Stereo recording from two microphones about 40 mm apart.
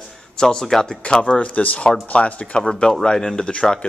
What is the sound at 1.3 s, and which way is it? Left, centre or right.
Speech, left.